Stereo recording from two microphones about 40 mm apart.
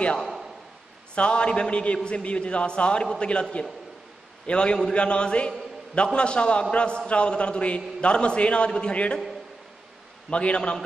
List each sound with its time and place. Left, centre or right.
1.1 s a man's voice: left
4.5 s a man's voice: left
10.3 s a man's voice: left